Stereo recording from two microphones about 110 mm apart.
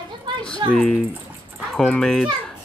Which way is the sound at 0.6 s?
45° right (ahead or behind).